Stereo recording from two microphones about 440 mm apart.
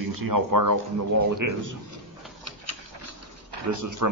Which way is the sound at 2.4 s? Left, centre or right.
Right.